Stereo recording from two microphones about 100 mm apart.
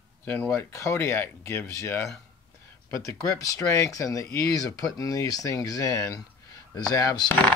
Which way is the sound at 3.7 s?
30° left (ahead or behind).